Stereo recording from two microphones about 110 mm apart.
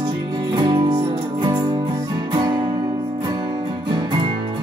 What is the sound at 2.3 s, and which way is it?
Guitar, 40° right (ahead or behind).